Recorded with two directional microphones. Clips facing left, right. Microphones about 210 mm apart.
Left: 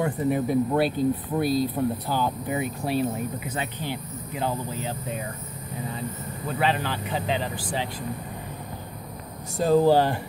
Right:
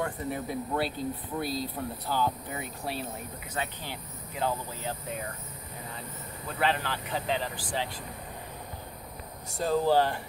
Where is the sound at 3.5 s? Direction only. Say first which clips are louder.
Left 5 dB; 20° left (ahead or behind).